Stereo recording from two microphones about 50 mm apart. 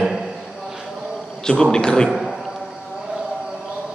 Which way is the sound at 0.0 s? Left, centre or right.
Centre.